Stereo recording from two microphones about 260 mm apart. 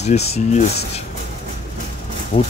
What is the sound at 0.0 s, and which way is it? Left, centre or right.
Speech, left.